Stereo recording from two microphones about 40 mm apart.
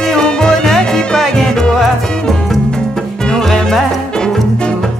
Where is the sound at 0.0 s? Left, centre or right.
Centre.